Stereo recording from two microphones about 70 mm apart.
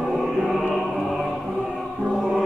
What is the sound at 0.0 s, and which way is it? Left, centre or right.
Music, centre.